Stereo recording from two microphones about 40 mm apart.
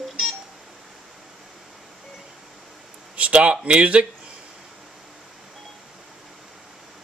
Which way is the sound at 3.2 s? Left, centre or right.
Right.